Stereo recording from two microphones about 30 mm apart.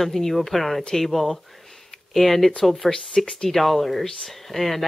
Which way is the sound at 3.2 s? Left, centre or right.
Centre.